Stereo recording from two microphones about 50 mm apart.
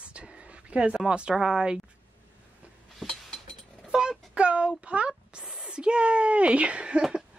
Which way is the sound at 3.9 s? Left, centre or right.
Centre.